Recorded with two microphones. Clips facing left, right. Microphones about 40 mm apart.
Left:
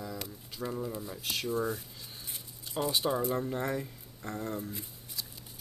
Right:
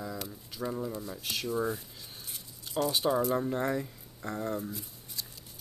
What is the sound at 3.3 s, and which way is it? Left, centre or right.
Speech, centre.